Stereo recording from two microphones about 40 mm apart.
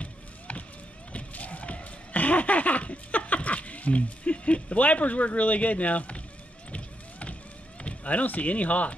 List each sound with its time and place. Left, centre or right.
0.0 s a sound: left
6.7 s music: left
7.8 s speech: left